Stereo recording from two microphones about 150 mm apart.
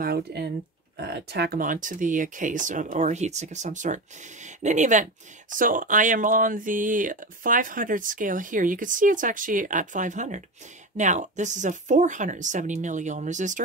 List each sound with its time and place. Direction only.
0.0 s speech: 90° right; by 13.6 s 55° right (ahead or behind)